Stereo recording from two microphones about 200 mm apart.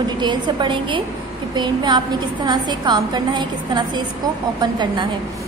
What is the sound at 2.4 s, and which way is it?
A woman's voice, 20° right (ahead or behind).